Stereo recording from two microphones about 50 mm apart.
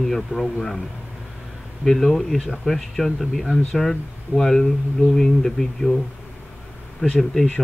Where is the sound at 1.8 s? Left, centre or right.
Centre.